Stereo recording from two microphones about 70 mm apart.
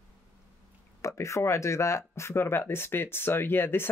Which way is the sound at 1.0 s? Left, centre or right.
Left.